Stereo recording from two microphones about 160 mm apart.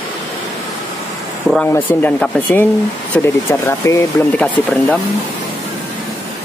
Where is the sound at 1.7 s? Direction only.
10° left (ahead or behind).